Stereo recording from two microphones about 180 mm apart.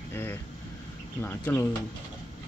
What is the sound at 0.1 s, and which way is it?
Vehicle, 10° left (ahead or behind).